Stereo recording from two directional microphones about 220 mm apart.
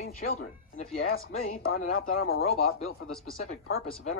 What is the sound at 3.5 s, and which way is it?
Speech, 65° left (ahead or behind).